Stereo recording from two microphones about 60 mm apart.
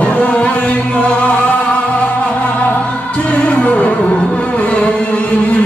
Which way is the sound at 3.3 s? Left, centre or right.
Left.